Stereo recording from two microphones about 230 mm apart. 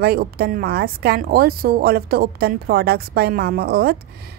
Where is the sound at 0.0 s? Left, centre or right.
Right.